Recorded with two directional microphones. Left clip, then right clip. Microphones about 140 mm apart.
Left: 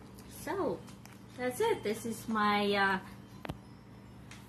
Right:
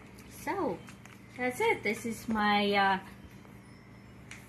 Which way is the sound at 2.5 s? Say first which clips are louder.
Right 3 dB; 40° right (ahead or behind).